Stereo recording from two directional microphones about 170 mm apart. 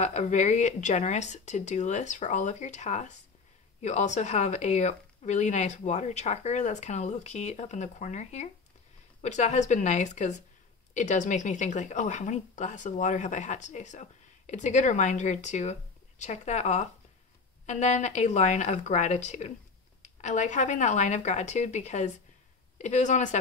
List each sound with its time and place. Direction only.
0.0 s a woman's voice: 45° left (ahead or behind)